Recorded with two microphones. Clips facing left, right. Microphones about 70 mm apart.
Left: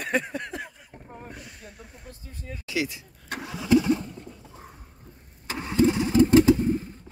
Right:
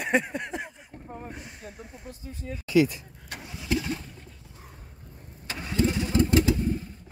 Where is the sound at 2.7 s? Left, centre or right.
Right.